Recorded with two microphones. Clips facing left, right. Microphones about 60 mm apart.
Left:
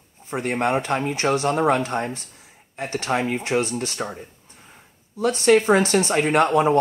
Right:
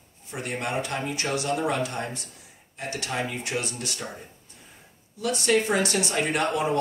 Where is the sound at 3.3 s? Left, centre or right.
Left.